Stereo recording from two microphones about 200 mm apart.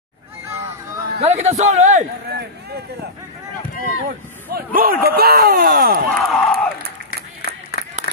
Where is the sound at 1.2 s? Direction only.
35° right (ahead or behind).